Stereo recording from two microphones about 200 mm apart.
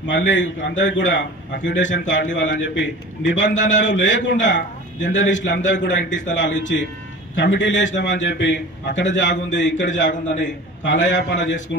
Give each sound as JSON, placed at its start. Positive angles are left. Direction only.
{"t": 0.0, "sound": "a man's voice", "side_deg": 65}